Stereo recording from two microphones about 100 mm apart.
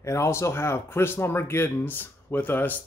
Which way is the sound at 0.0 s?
30° left (ahead or behind).